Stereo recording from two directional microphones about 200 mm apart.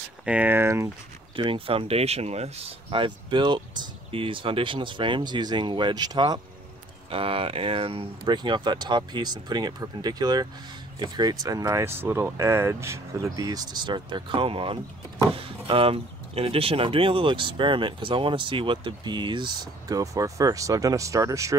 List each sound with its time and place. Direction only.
0.2 s speech: 5° right (ahead or behind)
1.3 s speech: 25° right (ahead or behind)